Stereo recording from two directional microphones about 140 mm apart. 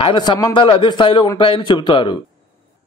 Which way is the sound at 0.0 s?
35° left (ahead or behind).